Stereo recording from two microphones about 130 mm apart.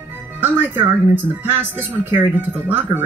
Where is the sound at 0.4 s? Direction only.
15° right (ahead or behind).